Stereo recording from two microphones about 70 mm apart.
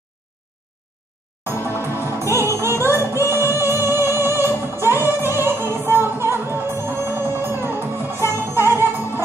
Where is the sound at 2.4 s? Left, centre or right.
Right.